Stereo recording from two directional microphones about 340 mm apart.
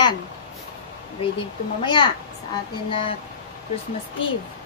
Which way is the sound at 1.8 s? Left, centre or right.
Centre.